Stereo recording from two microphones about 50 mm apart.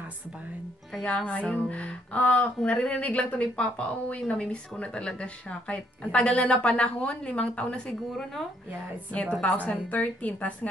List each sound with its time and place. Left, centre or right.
1.2 s speech: left
9.1 s a woman's voice: left